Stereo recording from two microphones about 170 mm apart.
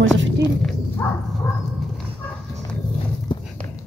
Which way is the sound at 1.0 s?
15° left (ahead or behind).